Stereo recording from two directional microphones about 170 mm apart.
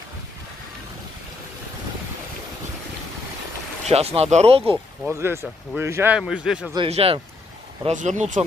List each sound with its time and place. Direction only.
3.9 s speech: 35° right (ahead or behind)
5.1 s speech: 15° right (ahead or behind)
6.9 s speech: 35° right (ahead or behind)
7.8 s speech: 45° right (ahead or behind)